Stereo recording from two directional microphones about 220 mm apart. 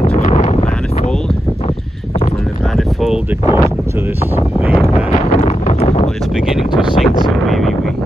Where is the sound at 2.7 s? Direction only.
Centre (ahead or behind).